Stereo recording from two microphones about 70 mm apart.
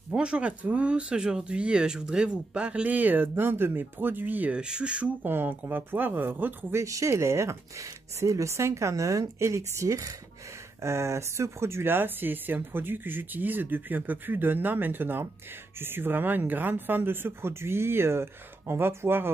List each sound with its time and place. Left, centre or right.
0.1 s speech: centre
5.2 s speech: right
6.8 s speech: right